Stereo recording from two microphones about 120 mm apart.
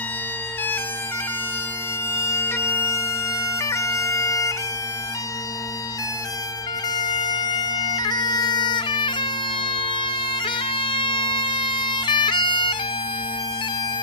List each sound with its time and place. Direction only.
2.1 s bagpipes: 20° left (ahead or behind)
7.0 s bagpipes: 35° left (ahead or behind)